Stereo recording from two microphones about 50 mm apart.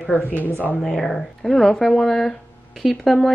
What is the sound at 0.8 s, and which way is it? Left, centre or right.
Speech, centre.